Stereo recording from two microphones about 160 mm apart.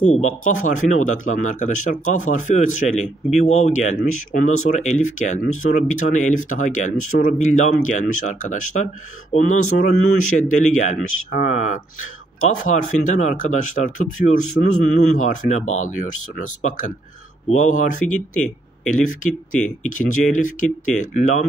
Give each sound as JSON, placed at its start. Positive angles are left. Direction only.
{"t": 0.0, "sound": "speech", "side_deg": 50}